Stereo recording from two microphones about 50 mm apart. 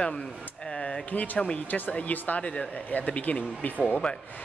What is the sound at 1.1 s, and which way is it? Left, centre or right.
Speech, left.